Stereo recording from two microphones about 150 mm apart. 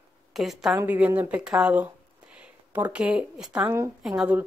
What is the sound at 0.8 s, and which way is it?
Speech, 10° right (ahead or behind).